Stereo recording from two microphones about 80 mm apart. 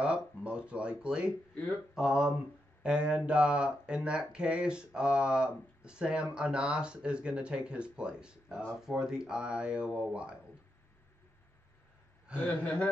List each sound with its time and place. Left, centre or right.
0.0 s speech: centre
12.4 s a man's voice: left